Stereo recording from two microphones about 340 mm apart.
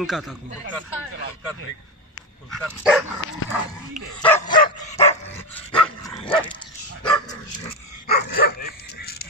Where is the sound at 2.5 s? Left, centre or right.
Centre.